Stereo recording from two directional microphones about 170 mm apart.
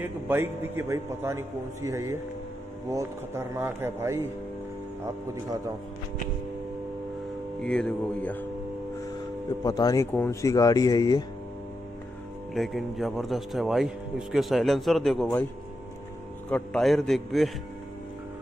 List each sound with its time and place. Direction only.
0.0 s a man's voice: 15° right (ahead or behind)
7.6 s speech: 5° left (ahead or behind)
9.6 s speech: 25° left (ahead or behind)
12.5 s speech: centre (ahead or behind)
16.4 s speech: 5° left (ahead or behind)